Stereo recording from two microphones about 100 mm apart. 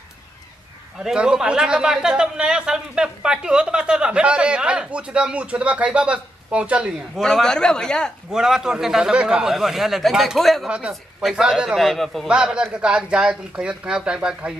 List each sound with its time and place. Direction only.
0.9 s a man's voice: 5° right (ahead or behind)
7.2 s speech: 5° left (ahead or behind)
8.3 s a man's voice: 5° right (ahead or behind)
10.7 s a man's voice: 10° right (ahead or behind)
12.3 s a man's voice: 10° right (ahead or behind)